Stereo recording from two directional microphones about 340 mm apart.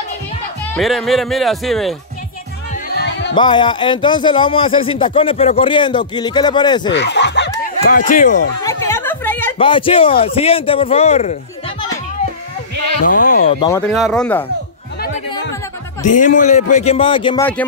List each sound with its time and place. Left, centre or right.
0.7 s speech: centre
2.7 s music: left
3.3 s speech: centre
6.9 s snicker: left
8.6 s speech: centre
13.2 s speech: left; by 14.4 s centre
15.0 s music: left
16.1 s speech: left; by 17.6 s centre